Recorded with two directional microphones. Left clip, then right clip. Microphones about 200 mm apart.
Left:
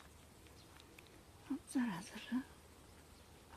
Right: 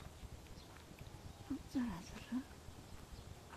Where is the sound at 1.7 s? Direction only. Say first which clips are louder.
Left 3 dB; 40° left (ahead or behind).